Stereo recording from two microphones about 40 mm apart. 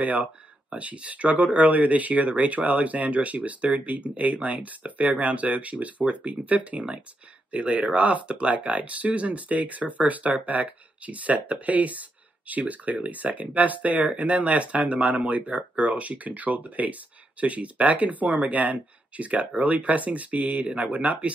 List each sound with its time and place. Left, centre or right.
0.0 s speech: right